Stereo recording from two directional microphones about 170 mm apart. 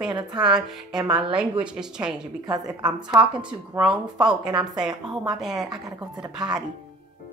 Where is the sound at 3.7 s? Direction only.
5° right (ahead or behind).